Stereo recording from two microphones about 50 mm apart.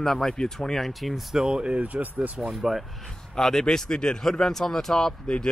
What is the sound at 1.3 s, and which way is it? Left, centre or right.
Speech, centre.